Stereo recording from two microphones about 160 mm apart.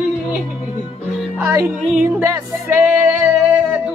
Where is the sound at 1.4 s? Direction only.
20° right (ahead or behind).